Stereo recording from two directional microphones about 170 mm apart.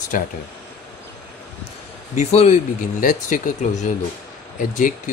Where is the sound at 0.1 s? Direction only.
50° left (ahead or behind).